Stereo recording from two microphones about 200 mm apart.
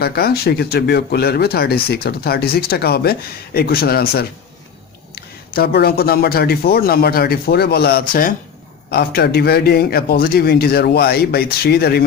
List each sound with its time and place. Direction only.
0.0 s speech: 50° left (ahead or behind)